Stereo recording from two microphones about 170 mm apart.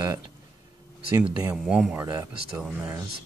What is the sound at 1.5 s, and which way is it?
Speech, 5° right (ahead or behind).